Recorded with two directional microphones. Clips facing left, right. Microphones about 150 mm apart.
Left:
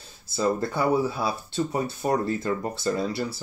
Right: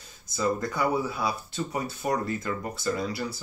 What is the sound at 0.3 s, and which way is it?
Speech, 30° left (ahead or behind).